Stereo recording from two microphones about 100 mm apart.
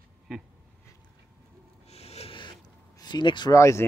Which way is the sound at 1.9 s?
90° left.